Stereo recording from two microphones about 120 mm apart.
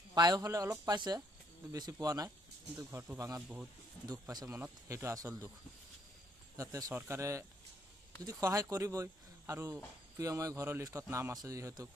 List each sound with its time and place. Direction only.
0.1 s speech: 35° right (ahead or behind); by 3.6 s 10° right (ahead or behind)
4.1 s speech: 30° right (ahead or behind)
4.6 s speech: 20° right (ahead or behind)
6.5 s speech: 25° right (ahead or behind)